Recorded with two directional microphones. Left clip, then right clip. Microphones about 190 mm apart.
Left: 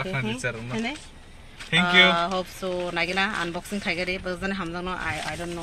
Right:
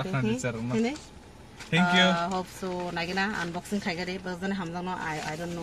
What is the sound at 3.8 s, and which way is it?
Speech, 25° left (ahead or behind).